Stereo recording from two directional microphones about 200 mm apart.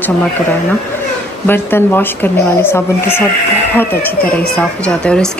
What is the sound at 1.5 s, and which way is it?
A woman's voice, 10° left (ahead or behind).